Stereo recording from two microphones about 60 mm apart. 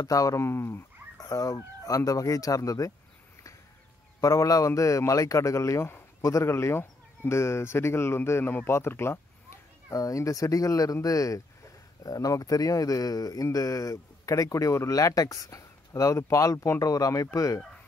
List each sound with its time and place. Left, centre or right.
0.0 s speech: left
0.4 s speech: left
1.3 s speech: left
4.2 s a man's voice: left
9.8 s speech: left
12.0 s a man's voice: left
16.8 s speech: left